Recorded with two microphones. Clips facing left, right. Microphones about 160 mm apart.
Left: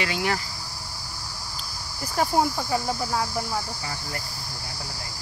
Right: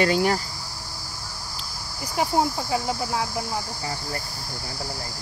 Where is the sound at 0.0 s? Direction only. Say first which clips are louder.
Right 6 dB; 40° right (ahead or behind).